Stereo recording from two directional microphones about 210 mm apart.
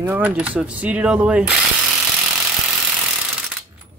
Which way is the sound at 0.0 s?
10° right (ahead or behind).